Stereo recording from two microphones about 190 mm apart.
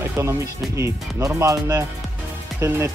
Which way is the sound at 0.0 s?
15° right (ahead or behind).